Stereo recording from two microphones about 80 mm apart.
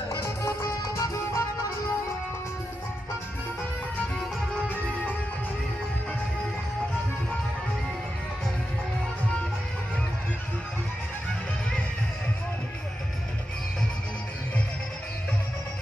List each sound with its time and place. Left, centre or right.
0.2 s music: left